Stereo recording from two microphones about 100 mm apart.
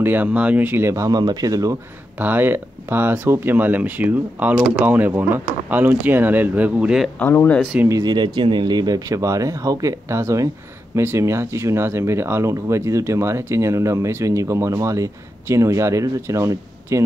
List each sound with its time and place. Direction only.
0.0 s speech: 20° right (ahead or behind); by 1.8 s 35° right (ahead or behind)
2.1 s speech: 20° right (ahead or behind)
7.2 s speech: 20° left (ahead or behind)
7.9 s speech: 45° right (ahead or behind)